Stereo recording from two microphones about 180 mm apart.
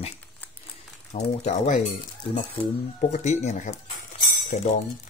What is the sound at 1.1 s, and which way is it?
Speech, 40° left (ahead or behind).